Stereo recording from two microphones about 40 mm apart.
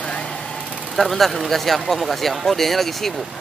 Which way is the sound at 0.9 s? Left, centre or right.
Centre.